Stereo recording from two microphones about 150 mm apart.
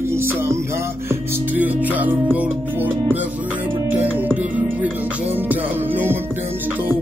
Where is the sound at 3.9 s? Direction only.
10° right (ahead or behind).